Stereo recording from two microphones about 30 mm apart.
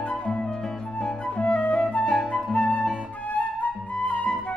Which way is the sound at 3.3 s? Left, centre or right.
Left.